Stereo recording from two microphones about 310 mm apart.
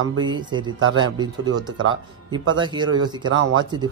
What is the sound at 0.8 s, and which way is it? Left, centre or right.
Speech, right.